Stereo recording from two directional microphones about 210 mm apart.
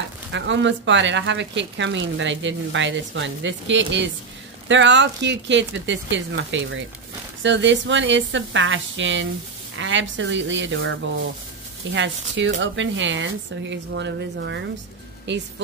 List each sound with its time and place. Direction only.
0.3 s speech: 60° right (ahead or behind)